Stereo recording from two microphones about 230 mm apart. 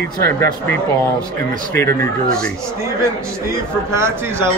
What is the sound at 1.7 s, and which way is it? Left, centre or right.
Speech, centre.